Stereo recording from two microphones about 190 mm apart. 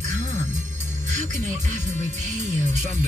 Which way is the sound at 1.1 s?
40° right (ahead or behind).